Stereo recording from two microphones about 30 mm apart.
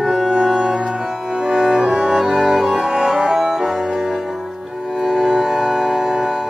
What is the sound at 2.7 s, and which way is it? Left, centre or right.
Music, right.